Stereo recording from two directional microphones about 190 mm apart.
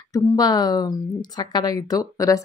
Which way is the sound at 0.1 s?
20° left (ahead or behind).